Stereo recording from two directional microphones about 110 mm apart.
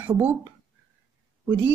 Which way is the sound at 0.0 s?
20° right (ahead or behind).